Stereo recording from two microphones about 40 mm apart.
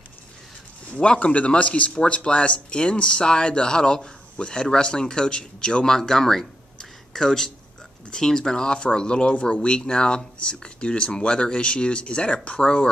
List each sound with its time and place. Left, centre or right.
0.9 s speech: left